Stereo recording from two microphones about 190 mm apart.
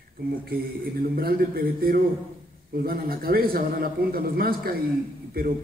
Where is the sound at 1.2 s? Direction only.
50° right (ahead or behind).